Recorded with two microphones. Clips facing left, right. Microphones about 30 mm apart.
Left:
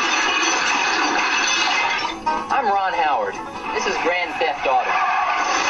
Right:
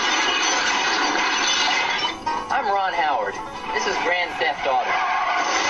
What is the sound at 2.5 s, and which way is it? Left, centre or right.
Speech, centre.